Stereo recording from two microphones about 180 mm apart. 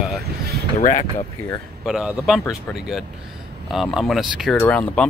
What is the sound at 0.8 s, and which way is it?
Speech, 45° left (ahead or behind).